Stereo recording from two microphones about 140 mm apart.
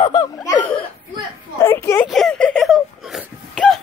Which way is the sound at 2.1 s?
5° left (ahead or behind).